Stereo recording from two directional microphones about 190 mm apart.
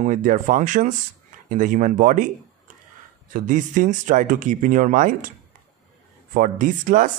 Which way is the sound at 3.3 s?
40° right (ahead or behind).